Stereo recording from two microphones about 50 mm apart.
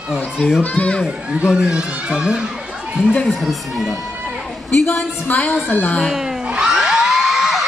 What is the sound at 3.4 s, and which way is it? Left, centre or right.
Speech, centre.